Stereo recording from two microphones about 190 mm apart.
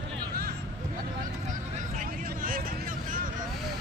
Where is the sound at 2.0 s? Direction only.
45° right (ahead or behind).